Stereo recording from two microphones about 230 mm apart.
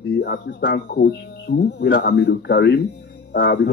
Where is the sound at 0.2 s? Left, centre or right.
Left.